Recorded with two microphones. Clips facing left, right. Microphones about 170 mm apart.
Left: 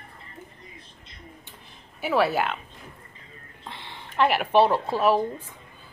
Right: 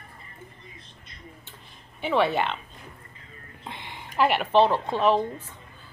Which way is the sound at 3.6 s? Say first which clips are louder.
Right 1 dB; 15° right (ahead or behind).